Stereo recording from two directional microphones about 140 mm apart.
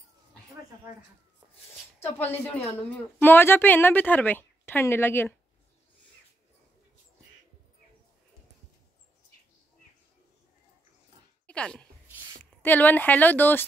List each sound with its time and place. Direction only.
2.0 s a woman's voice: 15° left (ahead or behind)
11.4 s a sound: 5° left (ahead or behind)
12.6 s a woman's voice: 15° left (ahead or behind)